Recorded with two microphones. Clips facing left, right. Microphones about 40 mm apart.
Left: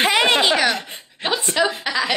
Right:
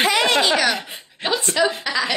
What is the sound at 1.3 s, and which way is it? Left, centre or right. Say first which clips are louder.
Speech: even; centre.